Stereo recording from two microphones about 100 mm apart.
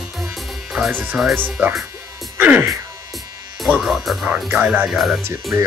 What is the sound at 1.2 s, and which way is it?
Speech, 5° right (ahead or behind).